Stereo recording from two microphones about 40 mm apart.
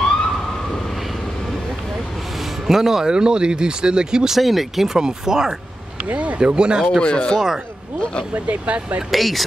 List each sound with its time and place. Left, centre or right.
2.6 s speech: centre
4.4 s speech: centre
4.9 s speech: centre
6.0 s speech: right
6.5 s speech: right
7.0 s speech: left
7.3 s speech: centre
8.0 s speech: left
8.5 s speech: right
9.1 s speech: centre